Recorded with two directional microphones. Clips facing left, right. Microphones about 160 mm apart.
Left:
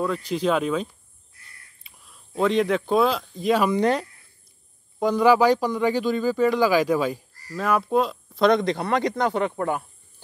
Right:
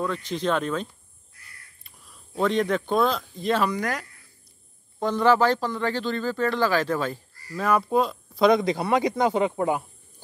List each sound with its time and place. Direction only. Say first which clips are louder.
0.3 s speech: left 3 dB; 5° left (ahead or behind)
3.7 s speech: left 8 dB; 25° left (ahead or behind)
4.9 s speech: left 3 dB; 10° left (ahead or behind)
7.5 s speech: even; centre (ahead or behind)